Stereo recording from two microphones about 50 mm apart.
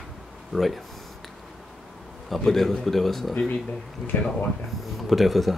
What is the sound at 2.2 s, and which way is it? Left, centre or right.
Speech, centre.